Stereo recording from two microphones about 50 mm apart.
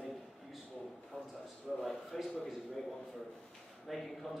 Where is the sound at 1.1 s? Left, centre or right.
Left.